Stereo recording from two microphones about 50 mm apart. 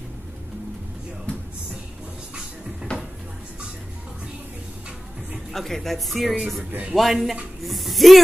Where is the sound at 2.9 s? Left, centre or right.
Left.